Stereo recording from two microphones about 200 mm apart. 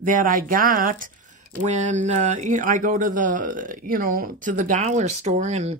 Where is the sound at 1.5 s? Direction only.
35° right (ahead or behind).